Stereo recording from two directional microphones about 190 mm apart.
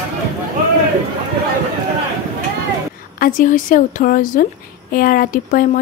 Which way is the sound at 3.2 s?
45° left (ahead or behind).